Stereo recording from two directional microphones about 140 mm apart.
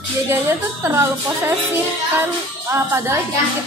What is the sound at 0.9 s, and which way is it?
Speech, 15° right (ahead or behind).